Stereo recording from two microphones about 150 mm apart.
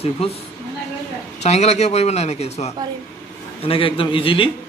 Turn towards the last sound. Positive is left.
turn(degrees=35)  # may be behind; listen again after turning